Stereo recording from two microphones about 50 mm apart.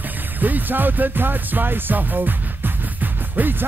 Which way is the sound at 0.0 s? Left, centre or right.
Right.